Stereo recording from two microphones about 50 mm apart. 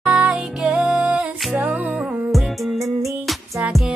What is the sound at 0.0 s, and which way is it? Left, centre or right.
Music, centre.